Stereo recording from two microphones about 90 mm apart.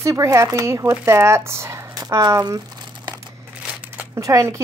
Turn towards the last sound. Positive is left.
turn(degrees=-35)  # may be behind; listen again after turning